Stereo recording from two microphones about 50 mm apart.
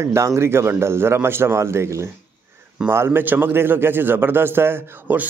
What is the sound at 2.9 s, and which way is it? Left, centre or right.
Speech, right.